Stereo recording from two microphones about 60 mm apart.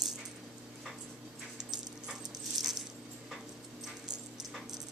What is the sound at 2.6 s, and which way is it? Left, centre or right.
Dog, right.